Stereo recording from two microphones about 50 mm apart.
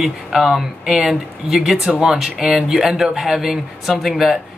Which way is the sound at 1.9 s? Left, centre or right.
Centre.